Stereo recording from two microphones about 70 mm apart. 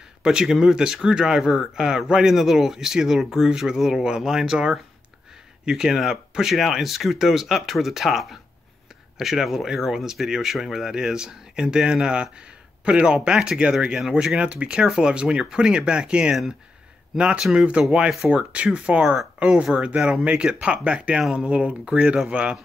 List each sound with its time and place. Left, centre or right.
0.2 s speech: centre